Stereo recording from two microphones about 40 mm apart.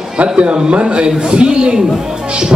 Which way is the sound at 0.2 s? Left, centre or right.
Right.